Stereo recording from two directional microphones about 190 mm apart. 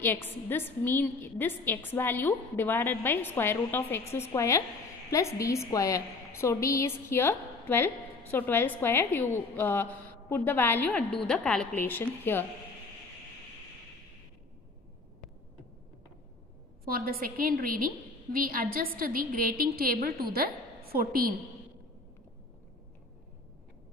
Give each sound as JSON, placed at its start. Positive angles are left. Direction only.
{"t": 0.0, "sound": "a woman's voice", "side_deg": 10}
{"t": 16.8, "sound": "a woman's voice", "side_deg": -50}